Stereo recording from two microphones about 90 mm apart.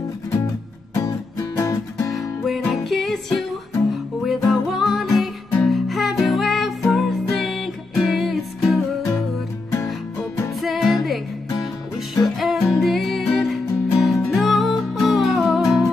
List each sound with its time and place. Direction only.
0.9 s music: 35° left (ahead or behind)
2.1 s music: centre (ahead or behind)
10.6 s music: centre (ahead or behind)
12.4 s music: centre (ahead or behind)